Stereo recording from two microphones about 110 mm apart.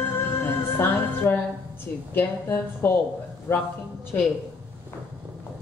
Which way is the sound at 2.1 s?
20° left (ahead or behind).